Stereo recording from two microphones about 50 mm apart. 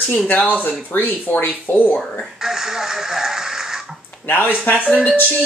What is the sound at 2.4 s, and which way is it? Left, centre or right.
Radio, centre.